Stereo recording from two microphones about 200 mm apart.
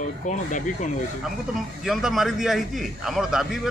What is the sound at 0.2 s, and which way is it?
Speech, 40° left (ahead or behind).